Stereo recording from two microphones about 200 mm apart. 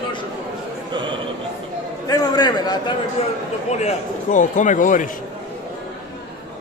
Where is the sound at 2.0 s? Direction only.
20° left (ahead or behind).